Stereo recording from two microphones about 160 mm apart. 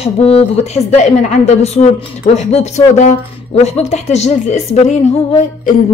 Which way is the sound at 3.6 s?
40° left (ahead or behind).